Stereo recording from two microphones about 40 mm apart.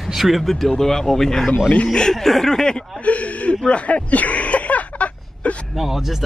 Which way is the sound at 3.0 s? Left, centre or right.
Left.